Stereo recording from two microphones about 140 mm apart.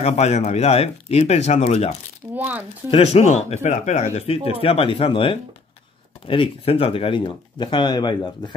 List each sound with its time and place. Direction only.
0.0 s speech: 50° left (ahead or behind)
2.3 s speech: 15° right (ahead or behind)
2.9 s speech: 45° left (ahead or behind)
4.5 s speech: 40° left (ahead or behind)